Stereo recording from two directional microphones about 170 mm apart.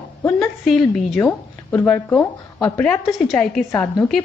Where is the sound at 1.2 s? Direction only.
10° left (ahead or behind).